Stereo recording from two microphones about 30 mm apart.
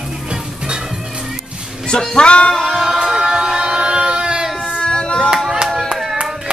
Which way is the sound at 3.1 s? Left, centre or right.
Right.